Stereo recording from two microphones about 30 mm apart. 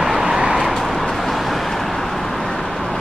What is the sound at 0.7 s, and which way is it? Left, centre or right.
Vehicle, centre.